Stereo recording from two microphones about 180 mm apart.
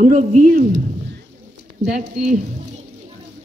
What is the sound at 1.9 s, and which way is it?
Speech, 45° right (ahead or behind).